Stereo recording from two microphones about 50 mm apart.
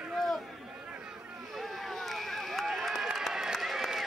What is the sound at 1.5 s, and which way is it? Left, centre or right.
Rowboat, centre.